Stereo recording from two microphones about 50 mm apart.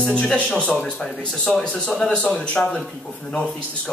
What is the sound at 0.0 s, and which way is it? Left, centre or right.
A man's voice, centre.